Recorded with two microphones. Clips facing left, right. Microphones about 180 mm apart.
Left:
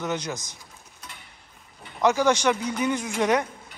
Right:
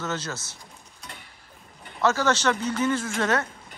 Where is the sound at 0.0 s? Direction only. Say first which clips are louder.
Left 2 dB; 15° left (ahead or behind).